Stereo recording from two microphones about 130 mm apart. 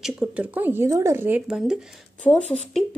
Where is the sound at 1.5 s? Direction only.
5° right (ahead or behind).